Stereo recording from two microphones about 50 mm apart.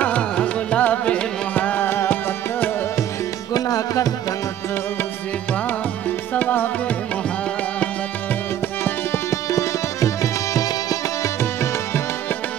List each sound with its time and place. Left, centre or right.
0.0 s carnatic music: left
6.0 s music: left
9.3 s music: left
11.2 s music: left